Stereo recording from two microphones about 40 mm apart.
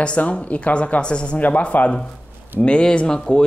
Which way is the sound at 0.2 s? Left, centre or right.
Left.